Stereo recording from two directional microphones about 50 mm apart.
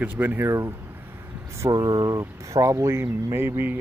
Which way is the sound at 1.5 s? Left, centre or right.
Right.